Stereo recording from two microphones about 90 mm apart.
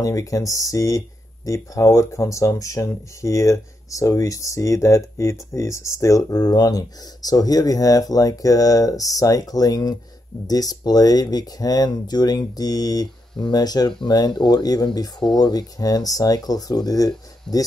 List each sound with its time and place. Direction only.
0.0 s speech: 40° left (ahead or behind)
17.5 s speech: 5° left (ahead or behind)